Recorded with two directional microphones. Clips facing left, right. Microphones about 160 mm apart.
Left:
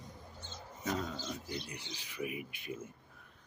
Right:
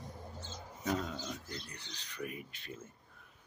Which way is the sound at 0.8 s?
Centre (ahead or behind).